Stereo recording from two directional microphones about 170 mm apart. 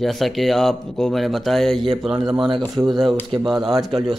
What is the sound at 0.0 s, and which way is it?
Speech, centre (ahead or behind).